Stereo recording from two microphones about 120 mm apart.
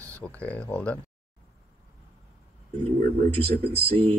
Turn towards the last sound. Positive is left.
turn(degrees=-50)  # may be behind; listen again after turning